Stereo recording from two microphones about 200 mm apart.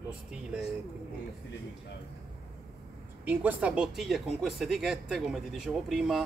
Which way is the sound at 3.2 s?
5° right (ahead or behind).